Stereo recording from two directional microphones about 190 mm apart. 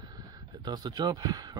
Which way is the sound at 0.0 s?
20° right (ahead or behind).